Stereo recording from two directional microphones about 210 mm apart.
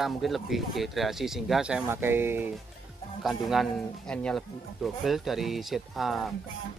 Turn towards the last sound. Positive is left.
turn(degrees=0)  # may be behind; listen again after turning